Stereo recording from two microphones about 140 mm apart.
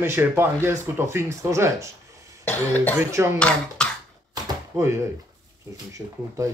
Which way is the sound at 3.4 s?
10° left (ahead or behind).